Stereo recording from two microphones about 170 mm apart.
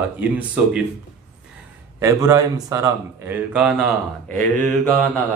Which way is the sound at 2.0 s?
20° right (ahead or behind).